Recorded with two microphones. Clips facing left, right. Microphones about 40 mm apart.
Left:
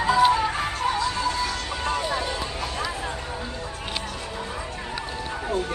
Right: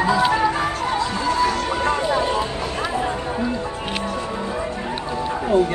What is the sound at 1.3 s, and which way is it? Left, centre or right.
Music, right.